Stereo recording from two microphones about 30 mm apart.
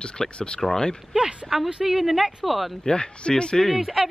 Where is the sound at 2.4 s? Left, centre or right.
Centre.